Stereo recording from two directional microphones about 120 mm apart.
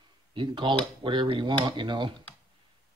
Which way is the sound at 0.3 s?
45° right (ahead or behind).